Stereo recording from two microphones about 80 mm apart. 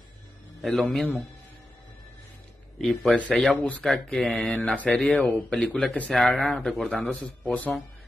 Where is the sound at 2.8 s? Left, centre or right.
Centre.